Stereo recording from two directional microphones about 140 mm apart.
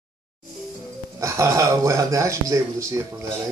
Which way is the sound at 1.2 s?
25° right (ahead or behind).